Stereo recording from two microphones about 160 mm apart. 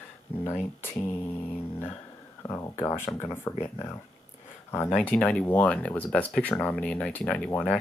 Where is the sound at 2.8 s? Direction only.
15° left (ahead or behind).